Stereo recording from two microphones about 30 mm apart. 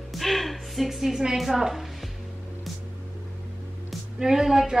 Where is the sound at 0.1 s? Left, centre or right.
Centre.